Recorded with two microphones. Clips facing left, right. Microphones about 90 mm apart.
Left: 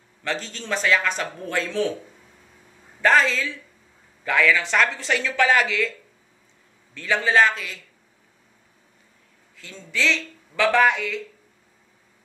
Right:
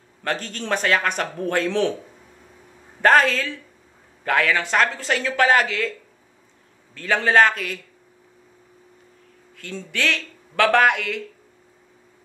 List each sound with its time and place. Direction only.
0.2 s a man's voice: 50° right (ahead or behind)
3.0 s a man's voice: 50° right (ahead or behind)
9.8 s a man's voice: 55° right (ahead or behind)